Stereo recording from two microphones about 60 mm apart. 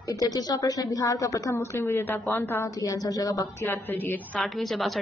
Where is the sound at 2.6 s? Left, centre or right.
Left.